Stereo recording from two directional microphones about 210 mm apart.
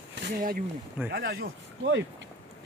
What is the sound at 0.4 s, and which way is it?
Speech, 40° right (ahead or behind).